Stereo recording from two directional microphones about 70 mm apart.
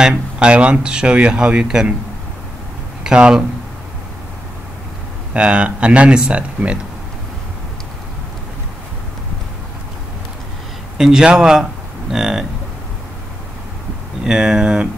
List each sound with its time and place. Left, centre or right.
0.1 s speech: centre
3.0 s speech: centre
5.3 s speech: centre
11.0 s speech: centre
14.2 s speech: centre